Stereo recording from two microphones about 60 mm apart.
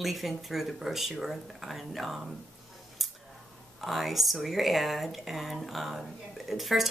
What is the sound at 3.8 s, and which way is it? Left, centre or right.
Speech, centre.